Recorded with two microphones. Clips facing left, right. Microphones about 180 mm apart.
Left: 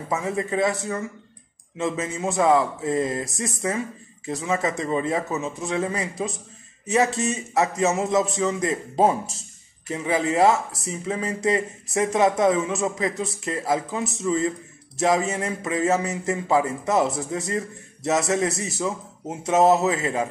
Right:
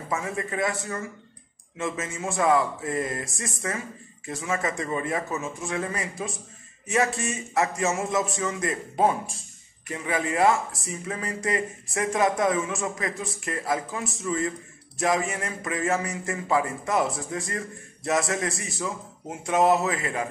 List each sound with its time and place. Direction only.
0.1 s speech: 25° left (ahead or behind)
1.8 s speech: 20° left (ahead or behind)